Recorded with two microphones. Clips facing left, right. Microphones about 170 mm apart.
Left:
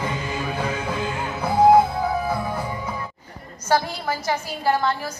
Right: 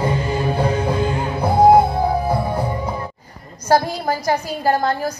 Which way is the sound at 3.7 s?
40° right (ahead or behind).